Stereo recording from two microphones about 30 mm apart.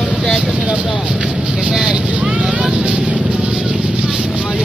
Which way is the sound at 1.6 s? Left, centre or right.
Right.